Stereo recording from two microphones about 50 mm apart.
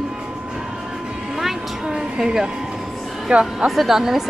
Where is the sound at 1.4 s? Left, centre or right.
Centre.